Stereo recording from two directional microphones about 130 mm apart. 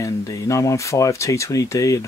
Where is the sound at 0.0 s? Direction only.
25° left (ahead or behind).